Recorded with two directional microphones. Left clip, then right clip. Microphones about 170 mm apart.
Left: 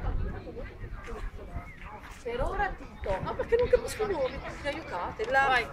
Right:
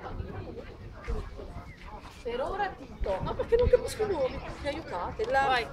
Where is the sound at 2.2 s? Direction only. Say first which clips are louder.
Even; 10° left (ahead or behind).